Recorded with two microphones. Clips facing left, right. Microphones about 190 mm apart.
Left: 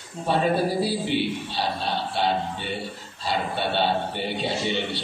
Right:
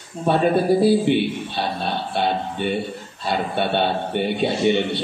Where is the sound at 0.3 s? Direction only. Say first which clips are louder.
Right 5 dB; 55° right (ahead or behind).